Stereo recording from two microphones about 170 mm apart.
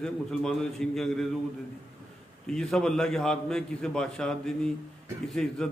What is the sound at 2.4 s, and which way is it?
A man's voice, 5° left (ahead or behind).